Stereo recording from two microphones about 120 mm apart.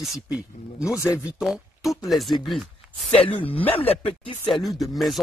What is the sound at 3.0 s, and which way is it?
Speech, 50° left (ahead or behind).